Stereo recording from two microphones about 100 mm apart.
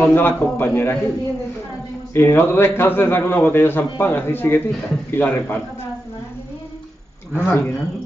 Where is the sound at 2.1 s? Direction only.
25° left (ahead or behind).